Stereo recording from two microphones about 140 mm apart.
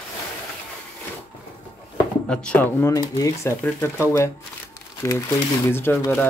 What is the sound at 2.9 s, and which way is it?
Speech, 25° left (ahead or behind).